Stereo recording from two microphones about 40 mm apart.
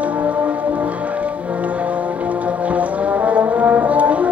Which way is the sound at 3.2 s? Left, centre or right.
Right.